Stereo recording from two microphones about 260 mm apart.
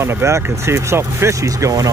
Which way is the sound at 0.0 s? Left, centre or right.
Centre.